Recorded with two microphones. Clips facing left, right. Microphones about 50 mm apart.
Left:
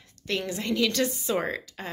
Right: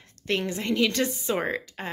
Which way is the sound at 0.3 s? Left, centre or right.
Right.